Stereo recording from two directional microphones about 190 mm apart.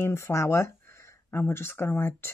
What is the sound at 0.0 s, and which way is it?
Speech, 15° left (ahead or behind).